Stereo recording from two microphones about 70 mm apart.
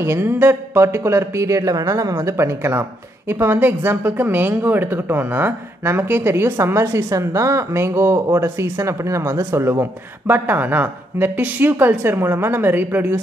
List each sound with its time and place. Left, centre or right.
0.0 s speech: right